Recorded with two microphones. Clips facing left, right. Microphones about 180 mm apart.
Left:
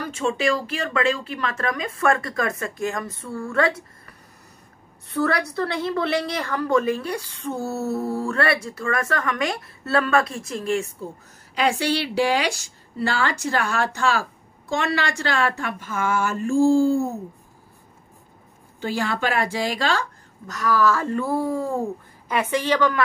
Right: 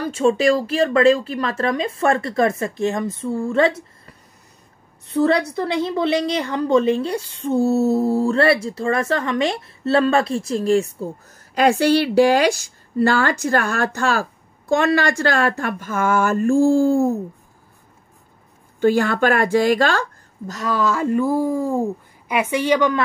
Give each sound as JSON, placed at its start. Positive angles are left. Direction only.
{"t": 0.0, "sound": "a woman's voice", "side_deg": -35}
{"t": 11.5, "sound": "a woman's voice", "side_deg": -45}
{"t": 18.8, "sound": "a woman's voice", "side_deg": -50}
{"t": 20.4, "sound": "speech", "side_deg": -25}